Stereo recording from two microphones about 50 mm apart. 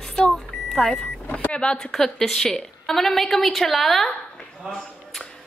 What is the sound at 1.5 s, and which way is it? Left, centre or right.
Speech, centre.